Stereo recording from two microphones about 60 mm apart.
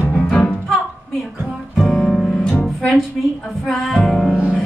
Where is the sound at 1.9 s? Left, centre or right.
Centre.